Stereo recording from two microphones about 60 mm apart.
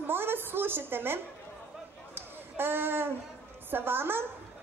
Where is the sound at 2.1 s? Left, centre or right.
Right.